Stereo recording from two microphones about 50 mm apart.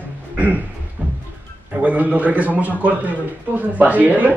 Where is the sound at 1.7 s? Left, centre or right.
Right.